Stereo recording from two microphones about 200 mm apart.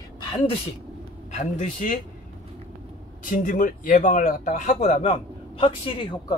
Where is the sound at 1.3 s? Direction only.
35° left (ahead or behind).